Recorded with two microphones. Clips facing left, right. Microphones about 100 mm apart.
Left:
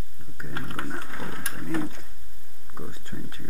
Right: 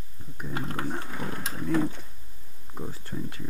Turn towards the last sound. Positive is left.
turn(degrees=5)  # may be behind; listen again after turning